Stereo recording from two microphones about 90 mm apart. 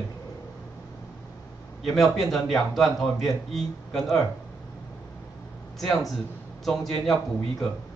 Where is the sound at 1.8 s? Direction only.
Centre (ahead or behind).